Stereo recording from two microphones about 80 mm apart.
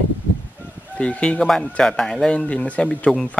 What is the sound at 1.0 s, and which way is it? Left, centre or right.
Speech, centre.